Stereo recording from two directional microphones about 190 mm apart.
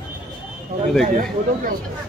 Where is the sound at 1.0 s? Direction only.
40° right (ahead or behind).